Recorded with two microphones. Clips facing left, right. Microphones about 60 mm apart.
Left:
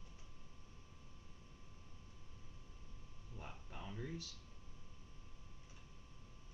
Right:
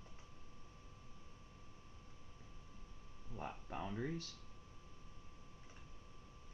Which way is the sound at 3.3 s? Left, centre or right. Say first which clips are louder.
Right 8 dB; right.